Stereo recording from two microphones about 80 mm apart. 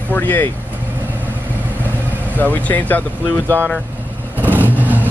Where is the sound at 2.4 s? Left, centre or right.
Left.